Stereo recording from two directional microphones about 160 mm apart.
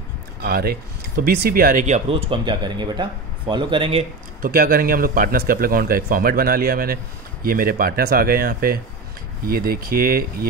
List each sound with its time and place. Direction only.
0.4 s speech: 70° right (ahead or behind); by 4.0 s 30° right (ahead or behind)
4.4 s a man's voice: 60° right (ahead or behind)